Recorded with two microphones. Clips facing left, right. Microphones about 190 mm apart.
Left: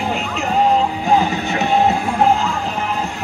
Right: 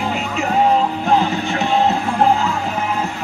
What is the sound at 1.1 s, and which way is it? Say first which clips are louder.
Music: left 1 dB; 15° left (ahead or behind).